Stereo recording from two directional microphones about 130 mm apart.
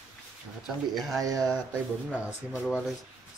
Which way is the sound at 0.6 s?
Centre (ahead or behind).